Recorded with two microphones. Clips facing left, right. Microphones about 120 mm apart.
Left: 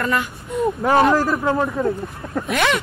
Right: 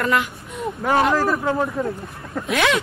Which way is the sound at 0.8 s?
30° left (ahead or behind).